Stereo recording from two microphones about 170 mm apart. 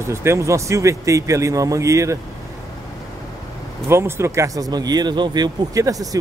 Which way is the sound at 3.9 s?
15° right (ahead or behind).